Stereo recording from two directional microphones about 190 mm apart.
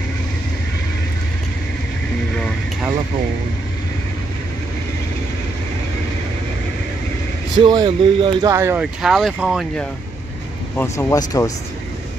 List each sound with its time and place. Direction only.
7.5 s speech: 25° right (ahead or behind); by 9.8 s centre (ahead or behind)
10.8 s speech: 15° left (ahead or behind)